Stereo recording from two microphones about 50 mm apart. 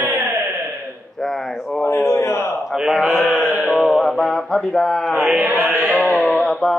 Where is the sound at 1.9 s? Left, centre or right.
Left.